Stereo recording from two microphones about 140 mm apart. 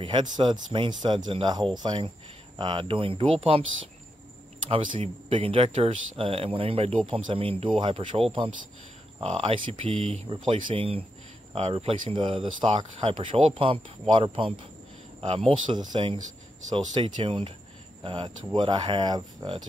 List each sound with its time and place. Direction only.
0.0 s speech: 35° right (ahead or behind)
4.6 s speech: 45° right (ahead or behind)